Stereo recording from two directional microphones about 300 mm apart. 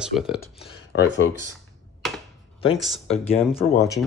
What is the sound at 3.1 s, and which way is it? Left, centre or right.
Speech, centre.